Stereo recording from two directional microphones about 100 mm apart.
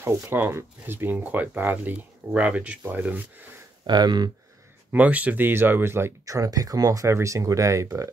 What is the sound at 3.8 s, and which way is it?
Speech, 50° right (ahead or behind).